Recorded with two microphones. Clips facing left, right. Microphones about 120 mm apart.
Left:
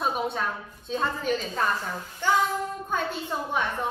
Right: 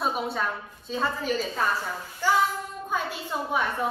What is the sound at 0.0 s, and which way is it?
Speech, centre (ahead or behind).